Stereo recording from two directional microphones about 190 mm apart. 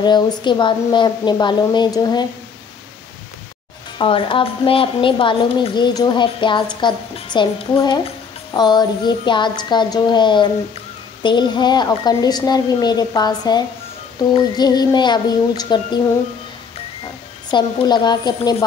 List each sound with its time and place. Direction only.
0.0 s a woman's voice: 25° left (ahead or behind)
4.0 s a woman's voice: 25° left (ahead or behind)
17.5 s a woman's voice: 25° left (ahead or behind)